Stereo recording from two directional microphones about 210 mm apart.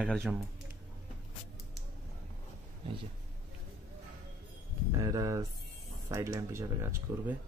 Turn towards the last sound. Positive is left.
turn(degrees=-10)  # may be behind; listen again after turning